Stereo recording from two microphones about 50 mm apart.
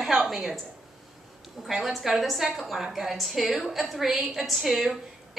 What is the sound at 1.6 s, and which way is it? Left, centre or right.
A woman's voice, centre.